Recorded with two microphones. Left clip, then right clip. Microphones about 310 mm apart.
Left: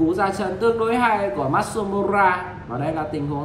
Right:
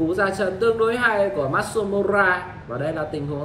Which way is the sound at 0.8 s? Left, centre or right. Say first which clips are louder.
Even; left.